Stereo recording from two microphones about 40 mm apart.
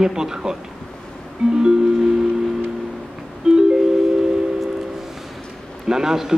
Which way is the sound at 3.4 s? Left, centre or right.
Centre.